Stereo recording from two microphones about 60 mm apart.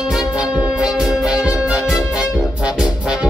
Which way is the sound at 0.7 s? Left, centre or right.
Centre.